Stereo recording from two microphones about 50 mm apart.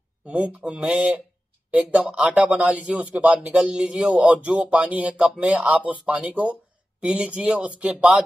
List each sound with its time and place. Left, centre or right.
0.8 s speech: right